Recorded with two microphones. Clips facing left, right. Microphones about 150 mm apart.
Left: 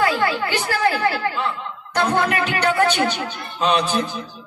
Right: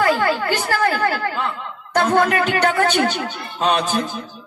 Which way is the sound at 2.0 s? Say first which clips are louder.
Right 3 dB; 45° right (ahead or behind).